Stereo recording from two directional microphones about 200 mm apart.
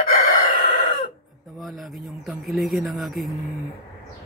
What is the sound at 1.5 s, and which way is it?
Speech, centre (ahead or behind).